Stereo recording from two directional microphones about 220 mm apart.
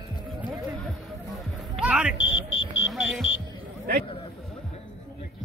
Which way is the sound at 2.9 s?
Centre (ahead or behind).